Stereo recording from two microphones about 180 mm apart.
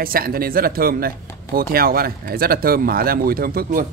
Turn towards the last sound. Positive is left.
turn(degrees=-55)  # may be behind; listen again after turning